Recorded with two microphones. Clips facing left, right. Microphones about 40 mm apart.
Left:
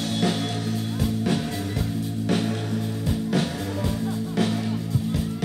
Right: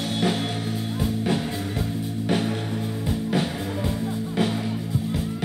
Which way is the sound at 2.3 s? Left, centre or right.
Centre.